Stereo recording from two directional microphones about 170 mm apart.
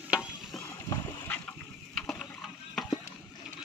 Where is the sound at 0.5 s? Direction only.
20° left (ahead or behind).